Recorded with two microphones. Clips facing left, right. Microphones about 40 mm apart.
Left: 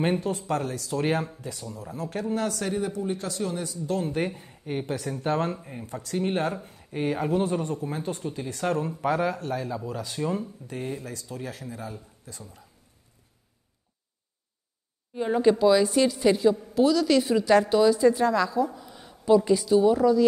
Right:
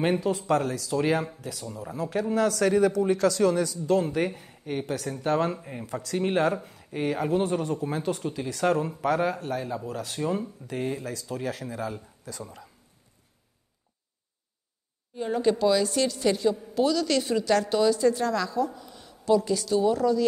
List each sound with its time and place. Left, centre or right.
0.2 s a man's voice: right
5.3 s speech: right
8.7 s speech: centre
9.0 s speech: right
9.5 s speech: right
9.8 s speech: right
10.2 s speech: right
10.7 s a man's voice: right
15.1 s a woman's voice: centre